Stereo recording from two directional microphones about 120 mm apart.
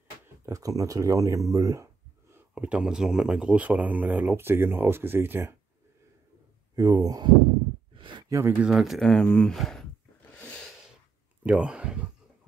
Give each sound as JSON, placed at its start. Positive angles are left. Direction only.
{"t": 0.5, "sound": "speech", "side_deg": -30}
{"t": 2.3, "sound": "speech", "side_deg": -10}
{"t": 6.7, "sound": "speech", "side_deg": -30}
{"t": 7.9, "sound": "a sound", "side_deg": -40}
{"t": 8.3, "sound": "speech", "side_deg": -20}
{"t": 8.5, "sound": "speech", "side_deg": -5}
{"t": 10.3, "sound": "snort", "side_deg": 10}
{"t": 11.4, "sound": "speech", "side_deg": -10}